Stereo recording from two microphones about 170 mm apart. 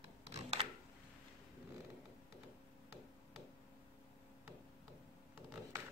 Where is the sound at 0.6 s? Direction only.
35° right (ahead or behind).